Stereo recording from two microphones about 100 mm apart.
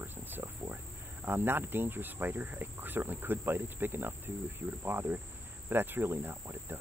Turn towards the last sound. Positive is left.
turn(degrees=-25)  # may be behind; listen again after turning